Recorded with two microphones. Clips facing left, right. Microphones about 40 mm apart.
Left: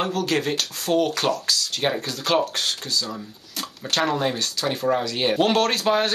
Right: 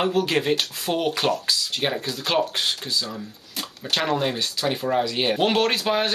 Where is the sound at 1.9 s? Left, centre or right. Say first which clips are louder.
Left 4 dB; centre.